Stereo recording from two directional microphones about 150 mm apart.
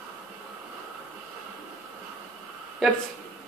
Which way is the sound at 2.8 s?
Centre (ahead or behind).